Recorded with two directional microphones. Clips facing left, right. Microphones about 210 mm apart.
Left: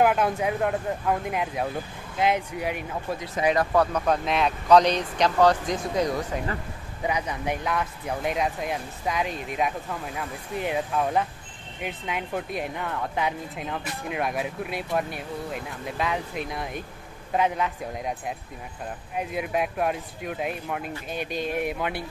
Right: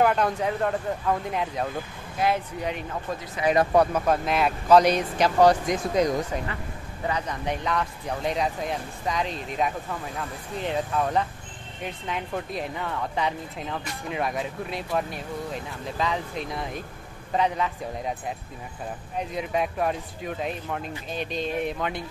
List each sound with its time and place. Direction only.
0.0 s speech: 5° left (ahead or behind)
2.1 s speech: 20° left (ahead or behind)
2.6 s speech: 5° left (ahead or behind)
3.5 s speech: 15° right (ahead or behind)
3.9 s speech: 5° right (ahead or behind)
7.0 s speech: 10° left (ahead or behind)
19.1 s speech: 5° left (ahead or behind)